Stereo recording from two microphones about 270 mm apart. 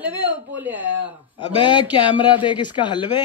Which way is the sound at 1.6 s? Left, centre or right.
Centre.